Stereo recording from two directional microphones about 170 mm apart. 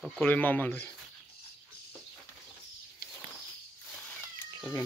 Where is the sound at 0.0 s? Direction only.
5° left (ahead or behind).